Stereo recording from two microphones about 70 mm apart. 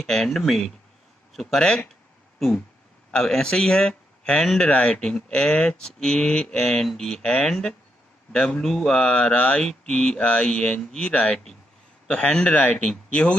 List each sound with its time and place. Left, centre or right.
0.0 s speech: centre
2.3 s a sound: centre
3.1 s speech: centre